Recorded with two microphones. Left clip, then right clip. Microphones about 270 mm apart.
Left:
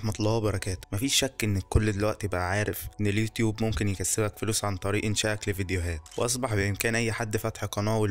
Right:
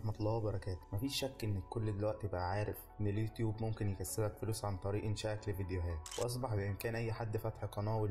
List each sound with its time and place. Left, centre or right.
0.0 s speech: left